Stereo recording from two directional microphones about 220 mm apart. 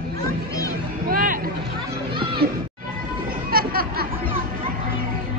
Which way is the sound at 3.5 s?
40° right (ahead or behind).